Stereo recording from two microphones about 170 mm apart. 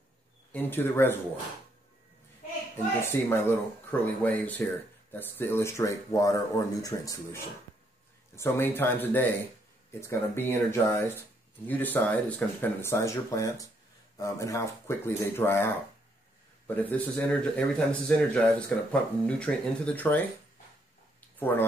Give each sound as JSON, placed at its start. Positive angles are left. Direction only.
{"t": 0.5, "sound": "speech", "side_deg": 10}
{"t": 3.1, "sound": "speech", "side_deg": 15}
{"t": 8.4, "sound": "speech", "side_deg": 15}
{"t": 21.4, "sound": "speech", "side_deg": 10}